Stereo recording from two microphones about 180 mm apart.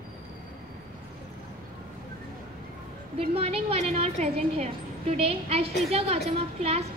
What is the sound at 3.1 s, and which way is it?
A woman's voice, 35° right (ahead or behind).